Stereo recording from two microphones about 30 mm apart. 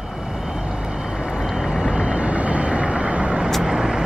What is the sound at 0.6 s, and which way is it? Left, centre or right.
Vehicle, right.